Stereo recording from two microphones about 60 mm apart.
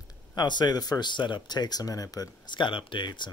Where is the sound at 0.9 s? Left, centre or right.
Left.